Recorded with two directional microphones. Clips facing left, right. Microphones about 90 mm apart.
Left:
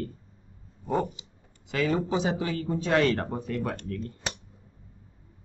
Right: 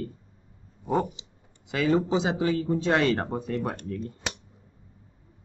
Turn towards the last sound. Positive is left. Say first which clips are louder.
# right 1 dB
turn(degrees=-15)  # may be behind; listen again after turning